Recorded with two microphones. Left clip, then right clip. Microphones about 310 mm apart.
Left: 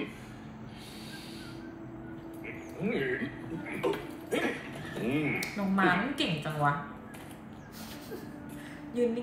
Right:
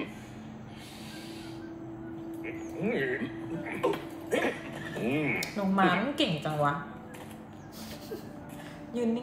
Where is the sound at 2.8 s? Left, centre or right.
Centre.